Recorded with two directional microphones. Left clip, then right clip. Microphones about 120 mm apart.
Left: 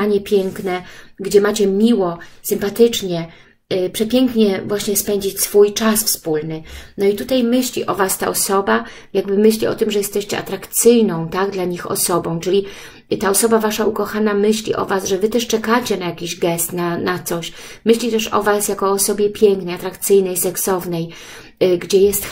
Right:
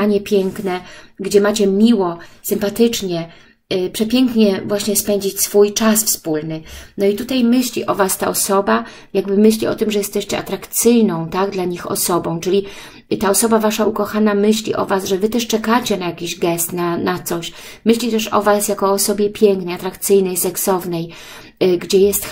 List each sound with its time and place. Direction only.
0.0 s a woman's voice: 45° right (ahead or behind)